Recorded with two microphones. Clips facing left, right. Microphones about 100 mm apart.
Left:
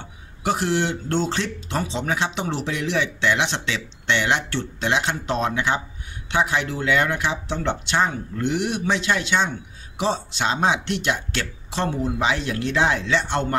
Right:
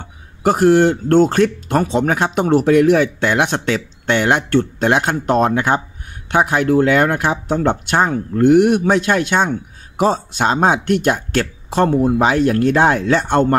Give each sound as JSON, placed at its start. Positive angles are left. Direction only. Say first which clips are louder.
{"t": 0.0, "sound": "speech", "louder": "right 9 dB", "side_deg": -45}